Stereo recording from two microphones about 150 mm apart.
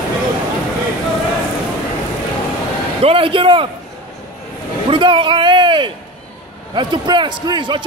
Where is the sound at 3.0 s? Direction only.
40° right (ahead or behind).